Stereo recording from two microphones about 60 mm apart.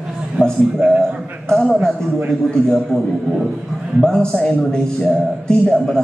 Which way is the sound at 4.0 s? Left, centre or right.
Centre.